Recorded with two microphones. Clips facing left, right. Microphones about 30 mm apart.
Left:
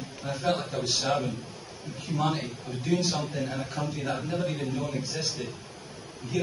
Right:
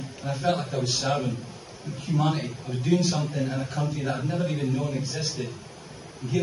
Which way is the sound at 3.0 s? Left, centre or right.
Centre.